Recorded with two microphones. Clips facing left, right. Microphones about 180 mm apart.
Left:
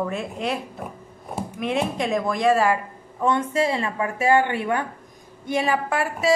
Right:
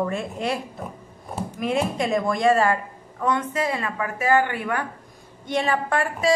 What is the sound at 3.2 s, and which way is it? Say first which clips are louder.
Speech: left 2 dB; 25° left (ahead or behind).